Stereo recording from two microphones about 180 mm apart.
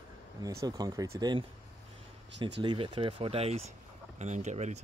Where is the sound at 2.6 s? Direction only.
30° right (ahead or behind).